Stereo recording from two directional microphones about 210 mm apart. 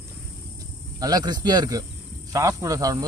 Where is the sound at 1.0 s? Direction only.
20° right (ahead or behind).